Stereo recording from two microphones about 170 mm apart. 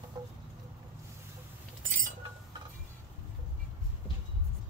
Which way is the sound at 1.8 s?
50° right (ahead or behind).